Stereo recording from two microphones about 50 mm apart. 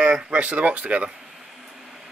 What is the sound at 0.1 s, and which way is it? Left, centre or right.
Speech, right.